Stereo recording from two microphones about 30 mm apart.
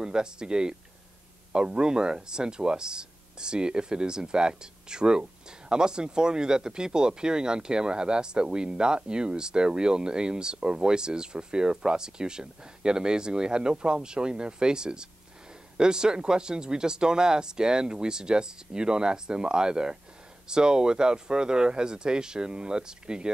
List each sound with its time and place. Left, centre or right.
0.0 s speech: right